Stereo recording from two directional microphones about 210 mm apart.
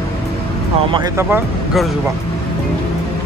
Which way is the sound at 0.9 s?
15° right (ahead or behind).